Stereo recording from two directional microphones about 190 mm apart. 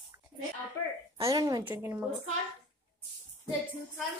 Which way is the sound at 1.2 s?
20° right (ahead or behind).